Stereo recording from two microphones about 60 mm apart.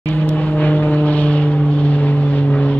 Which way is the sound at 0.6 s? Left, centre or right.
Left.